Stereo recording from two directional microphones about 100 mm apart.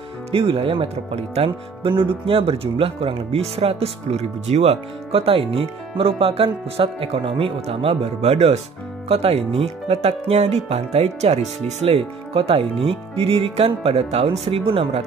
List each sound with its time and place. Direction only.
0.3 s speech: 65° right (ahead or behind)